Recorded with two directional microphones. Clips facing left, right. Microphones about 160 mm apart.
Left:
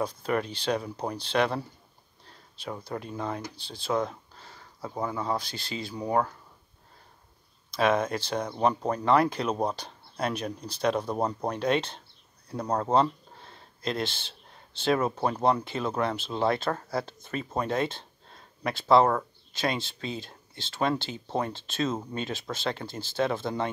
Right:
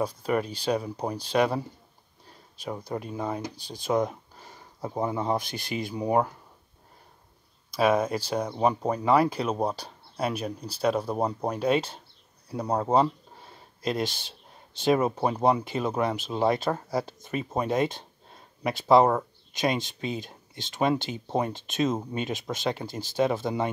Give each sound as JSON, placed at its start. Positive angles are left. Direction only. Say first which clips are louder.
{"t": 0.0, "sound": "speech", "louder": "right 2 dB", "side_deg": -10}
{"t": 7.7, "sound": "speech", "louder": "right 2 dB", "side_deg": -10}